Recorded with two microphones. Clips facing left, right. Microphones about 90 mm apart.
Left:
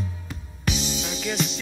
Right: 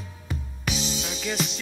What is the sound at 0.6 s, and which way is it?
Music, centre (ahead or behind).